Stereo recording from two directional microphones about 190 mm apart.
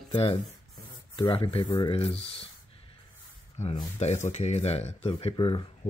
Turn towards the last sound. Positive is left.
turn(degrees=25)  # may be behind; listen again after turning